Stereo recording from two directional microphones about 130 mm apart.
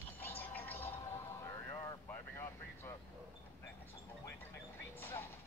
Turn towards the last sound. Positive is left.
turn(degrees=20)  # may be behind; listen again after turning